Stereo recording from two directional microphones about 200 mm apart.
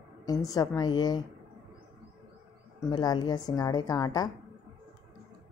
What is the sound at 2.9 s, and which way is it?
A woman's voice, 20° left (ahead or behind).